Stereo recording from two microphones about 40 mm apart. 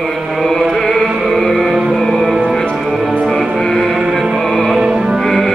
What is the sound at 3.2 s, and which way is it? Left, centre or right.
Music, centre.